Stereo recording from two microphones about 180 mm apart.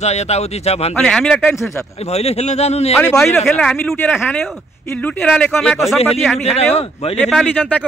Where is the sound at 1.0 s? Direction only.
5° left (ahead or behind).